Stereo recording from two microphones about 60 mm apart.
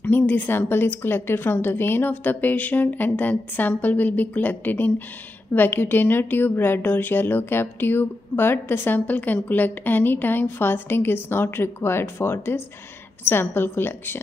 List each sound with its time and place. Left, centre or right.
0.0 s speech: left